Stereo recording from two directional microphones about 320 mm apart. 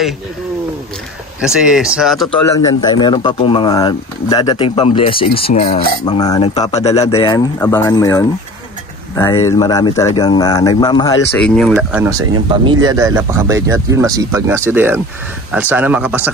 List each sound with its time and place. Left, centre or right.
1.4 s speech: centre
11.3 s speech: centre